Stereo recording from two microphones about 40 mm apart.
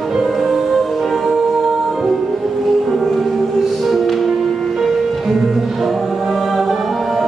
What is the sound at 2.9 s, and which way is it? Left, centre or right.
Music, centre.